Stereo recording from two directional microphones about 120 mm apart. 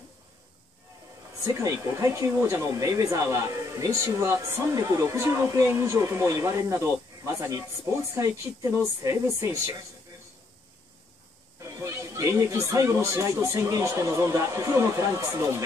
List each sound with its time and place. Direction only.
1.4 s speech: 30° right (ahead or behind)
8.7 s speech: 25° right (ahead or behind)
11.8 s speech: 25° right (ahead or behind)